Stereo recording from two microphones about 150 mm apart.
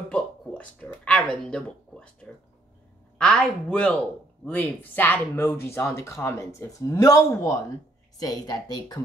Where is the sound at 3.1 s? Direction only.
5° left (ahead or behind).